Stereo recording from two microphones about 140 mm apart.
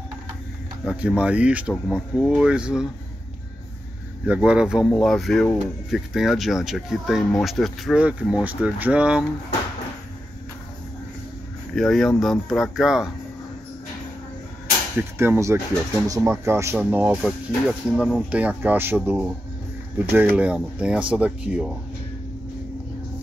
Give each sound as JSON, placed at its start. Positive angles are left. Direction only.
{"t": 0.8, "sound": "speech", "side_deg": -10}
{"t": 4.3, "sound": "speech", "side_deg": -5}
{"t": 11.7, "sound": "speech", "side_deg": 0}
{"t": 15.0, "sound": "speech", "side_deg": -15}
{"t": 16.9, "sound": "speech", "side_deg": -10}